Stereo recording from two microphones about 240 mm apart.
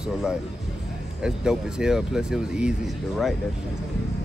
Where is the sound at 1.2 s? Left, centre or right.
Centre.